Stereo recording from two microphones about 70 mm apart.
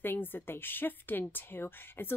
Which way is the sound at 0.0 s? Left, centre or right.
Left.